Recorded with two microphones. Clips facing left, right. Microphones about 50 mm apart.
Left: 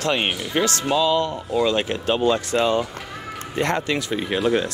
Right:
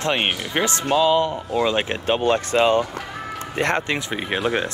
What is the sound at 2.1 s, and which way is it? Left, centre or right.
Speech, right.